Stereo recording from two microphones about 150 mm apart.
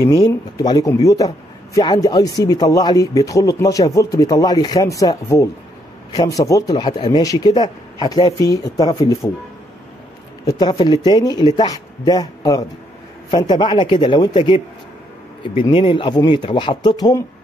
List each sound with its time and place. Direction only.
0.0 s a man's voice: 25° left (ahead or behind)
10.4 s a man's voice: 25° left (ahead or behind)
15.6 s a man's voice: 35° left (ahead or behind)